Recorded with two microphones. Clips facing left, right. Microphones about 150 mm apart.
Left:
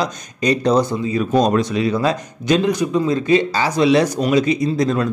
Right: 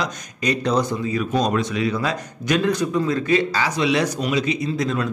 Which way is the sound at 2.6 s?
15° left (ahead or behind).